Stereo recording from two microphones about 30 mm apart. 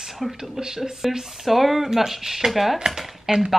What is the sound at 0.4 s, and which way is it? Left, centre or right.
Speech, centre.